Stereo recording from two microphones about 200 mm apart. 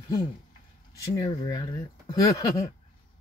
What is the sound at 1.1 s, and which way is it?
Speech, 20° left (ahead or behind).